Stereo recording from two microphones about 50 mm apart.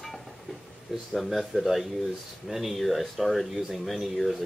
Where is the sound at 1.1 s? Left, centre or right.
Centre.